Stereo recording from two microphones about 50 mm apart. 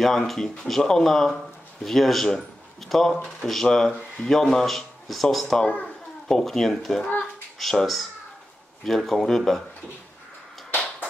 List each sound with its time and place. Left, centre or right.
0.0 s speech: centre
5.7 s a child's voice: left
6.2 s a child's voice: centre